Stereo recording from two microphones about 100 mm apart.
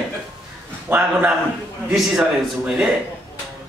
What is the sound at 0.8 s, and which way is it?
Speech, 20° right (ahead or behind).